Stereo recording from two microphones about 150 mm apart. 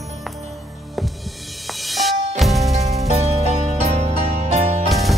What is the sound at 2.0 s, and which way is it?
Music, centre (ahead or behind).